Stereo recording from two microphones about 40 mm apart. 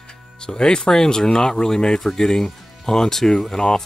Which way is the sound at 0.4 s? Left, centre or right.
Centre.